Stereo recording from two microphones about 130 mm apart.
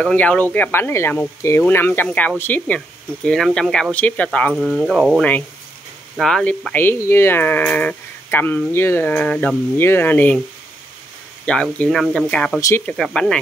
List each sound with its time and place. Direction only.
0.0 s speech: 10° left (ahead or behind)
3.3 s speech: 5° left (ahead or behind)
11.4 s speech: 5° left (ahead or behind)
12.5 s speech: 25° left (ahead or behind)
12.8 s speech: 5° left (ahead or behind)